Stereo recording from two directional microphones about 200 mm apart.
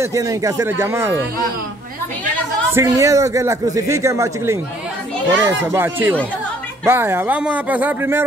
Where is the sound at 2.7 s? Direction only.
15° right (ahead or behind).